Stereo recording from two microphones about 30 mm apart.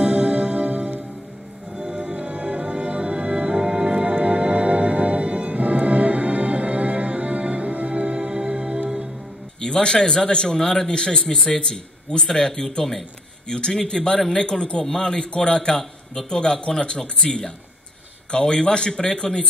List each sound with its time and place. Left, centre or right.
0.0 s music: right
1.8 s music: right
5.5 s music: right
9.6 s speech: left
15.1 s speech: left